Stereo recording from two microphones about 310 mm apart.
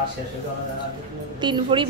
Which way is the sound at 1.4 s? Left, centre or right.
Centre.